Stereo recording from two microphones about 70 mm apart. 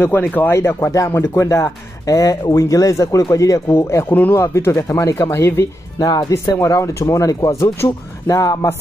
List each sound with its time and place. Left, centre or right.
0.2 s speech: left
0.5 s speech: left
4.1 s speech: left
4.4 s speech: left
5.9 s speech: left
6.3 s speech: left
8.3 s speech: left